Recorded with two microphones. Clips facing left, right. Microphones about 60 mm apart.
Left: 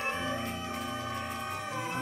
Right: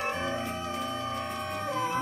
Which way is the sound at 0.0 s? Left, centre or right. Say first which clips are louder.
Right 2 dB; right.